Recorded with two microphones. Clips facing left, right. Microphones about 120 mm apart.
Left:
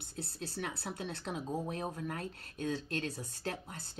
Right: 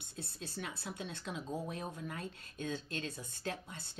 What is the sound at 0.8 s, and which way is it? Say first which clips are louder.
Speech: left 3 dB; 50° left (ahead or behind).